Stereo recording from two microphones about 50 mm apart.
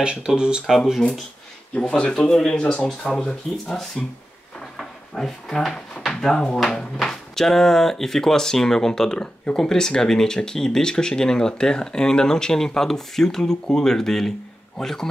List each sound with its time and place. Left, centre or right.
0.0 s speech: right
1.8 s speech: centre
4.7 s drawer open or close: centre
6.0 s a sound: centre
6.6 s speech: centre